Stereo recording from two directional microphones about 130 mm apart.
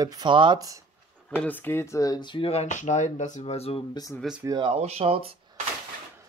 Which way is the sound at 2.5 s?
60° left (ahead or behind).